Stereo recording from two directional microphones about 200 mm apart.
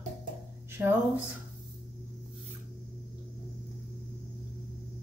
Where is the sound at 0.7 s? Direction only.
10° right (ahead or behind).